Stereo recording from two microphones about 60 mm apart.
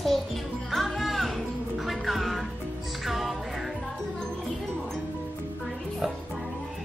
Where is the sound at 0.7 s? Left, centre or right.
Centre.